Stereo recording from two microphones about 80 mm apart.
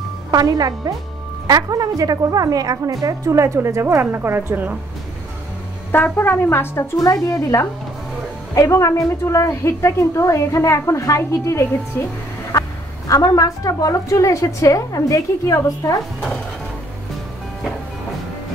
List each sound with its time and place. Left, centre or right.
0.3 s a woman's voice: right
5.9 s speech: left
7.0 s a woman's voice: left
13.1 s a woman's voice: left